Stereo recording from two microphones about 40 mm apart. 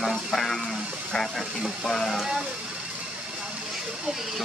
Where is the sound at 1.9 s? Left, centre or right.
Centre.